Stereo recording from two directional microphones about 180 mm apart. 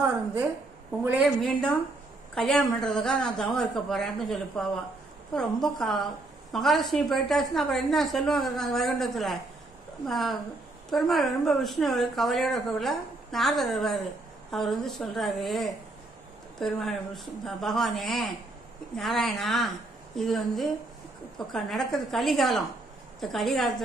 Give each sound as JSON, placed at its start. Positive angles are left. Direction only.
{"t": 0.0, "sound": "a woman's voice", "side_deg": -10}
{"t": 1.4, "sound": "a woman's voice", "side_deg": 5}